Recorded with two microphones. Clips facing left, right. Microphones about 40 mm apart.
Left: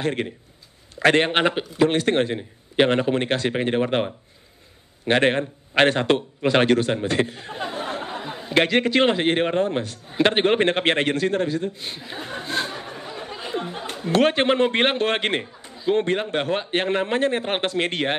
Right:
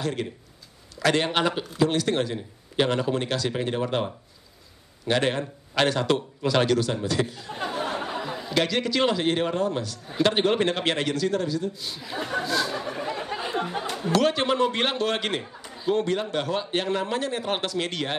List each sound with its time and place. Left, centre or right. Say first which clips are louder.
0.0 s speech: left 4 dB; left
7.6 s speech: even; left
12.4 s a sound: right 1 dB; left
13.0 s chatter: right 4 dB; right
13.8 s speech: left 4 dB; left